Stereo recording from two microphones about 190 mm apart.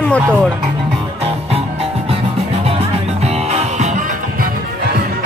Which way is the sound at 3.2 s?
35° right (ahead or behind).